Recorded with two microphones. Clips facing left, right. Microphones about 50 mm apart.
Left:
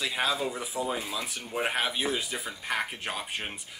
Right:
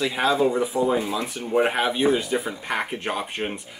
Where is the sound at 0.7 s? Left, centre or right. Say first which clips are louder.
Right 6 dB; right.